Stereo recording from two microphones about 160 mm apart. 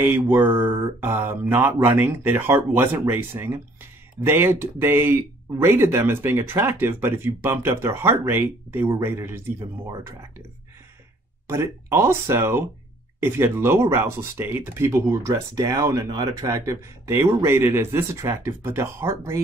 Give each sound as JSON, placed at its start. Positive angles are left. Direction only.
{"t": 0.0, "sound": "speech", "side_deg": -10}
{"t": 11.4, "sound": "speech", "side_deg": -15}